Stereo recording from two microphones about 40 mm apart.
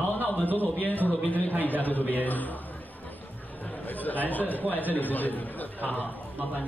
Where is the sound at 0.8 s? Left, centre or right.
Left.